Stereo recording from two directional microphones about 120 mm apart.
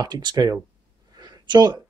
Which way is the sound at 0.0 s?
35° right (ahead or behind).